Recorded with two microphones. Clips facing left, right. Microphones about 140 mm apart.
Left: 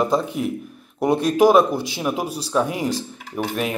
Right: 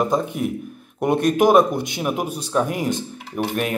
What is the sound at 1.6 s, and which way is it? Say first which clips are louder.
Speech: right 1 dB; 30° left (ahead or behind).